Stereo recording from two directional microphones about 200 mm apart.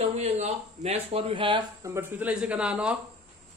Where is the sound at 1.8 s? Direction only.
10° right (ahead or behind).